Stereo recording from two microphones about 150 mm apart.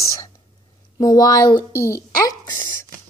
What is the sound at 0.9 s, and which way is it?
A woman's voice, 25° left (ahead or behind).